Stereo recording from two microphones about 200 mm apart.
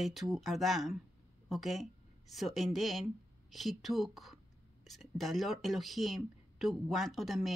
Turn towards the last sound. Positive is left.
turn(degrees=0)  # may be behind; listen again after turning